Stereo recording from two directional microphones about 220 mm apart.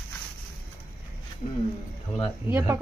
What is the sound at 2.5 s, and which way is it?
Speech, 10° right (ahead or behind).